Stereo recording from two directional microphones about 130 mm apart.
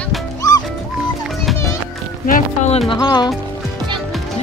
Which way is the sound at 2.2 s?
90° left.